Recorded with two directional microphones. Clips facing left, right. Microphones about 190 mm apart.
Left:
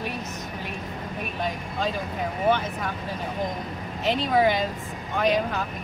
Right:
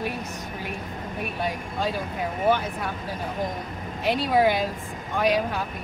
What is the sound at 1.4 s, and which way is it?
Speech, 10° right (ahead or behind).